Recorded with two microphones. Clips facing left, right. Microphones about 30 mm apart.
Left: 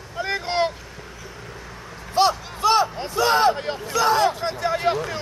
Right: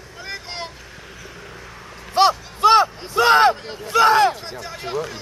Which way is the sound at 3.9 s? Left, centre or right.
Right.